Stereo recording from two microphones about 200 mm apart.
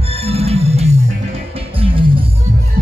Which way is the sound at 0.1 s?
30° right (ahead or behind).